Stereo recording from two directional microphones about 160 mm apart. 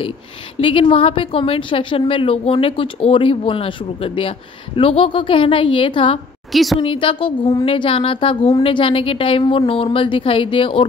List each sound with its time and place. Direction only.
0.6 s a woman's voice: 30° left (ahead or behind)
6.5 s a woman's voice: centre (ahead or behind)
6.8 s a woman's voice: 35° left (ahead or behind)